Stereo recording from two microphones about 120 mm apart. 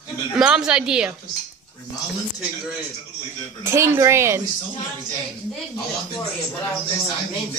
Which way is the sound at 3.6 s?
20° right (ahead or behind).